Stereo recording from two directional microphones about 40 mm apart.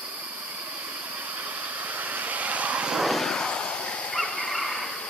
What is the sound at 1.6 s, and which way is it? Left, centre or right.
Vehicle, right.